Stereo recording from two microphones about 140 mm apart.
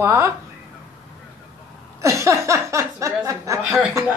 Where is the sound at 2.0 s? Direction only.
20° right (ahead or behind).